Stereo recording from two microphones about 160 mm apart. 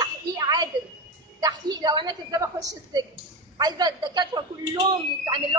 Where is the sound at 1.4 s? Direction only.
25° right (ahead or behind).